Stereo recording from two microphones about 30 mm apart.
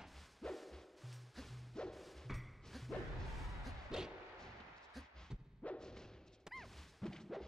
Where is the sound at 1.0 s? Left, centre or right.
Centre.